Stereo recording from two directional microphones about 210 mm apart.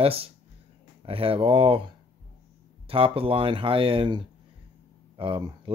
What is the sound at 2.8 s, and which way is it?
Speech, 25° right (ahead or behind).